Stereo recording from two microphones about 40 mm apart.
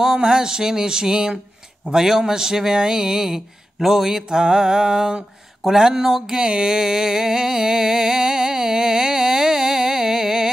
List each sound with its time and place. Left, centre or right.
0.0 s speech: centre
6.2 s music: right